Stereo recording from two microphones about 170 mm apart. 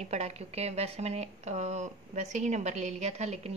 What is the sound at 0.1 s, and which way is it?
Speech, 40° right (ahead or behind).